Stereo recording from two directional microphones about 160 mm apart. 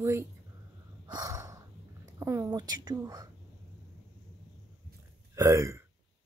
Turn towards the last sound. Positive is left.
turn(degrees=-20)  # may be behind; listen again after turning